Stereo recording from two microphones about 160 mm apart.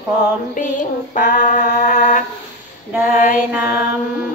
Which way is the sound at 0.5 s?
55° left (ahead or behind).